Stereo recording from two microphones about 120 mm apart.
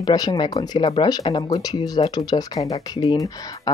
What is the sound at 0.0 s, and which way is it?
Speech, 35° left (ahead or behind).